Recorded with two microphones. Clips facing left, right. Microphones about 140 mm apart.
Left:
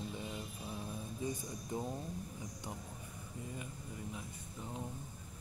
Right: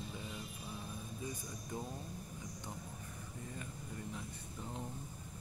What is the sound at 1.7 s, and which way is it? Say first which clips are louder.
Speech: left 4 dB; 20° left (ahead or behind).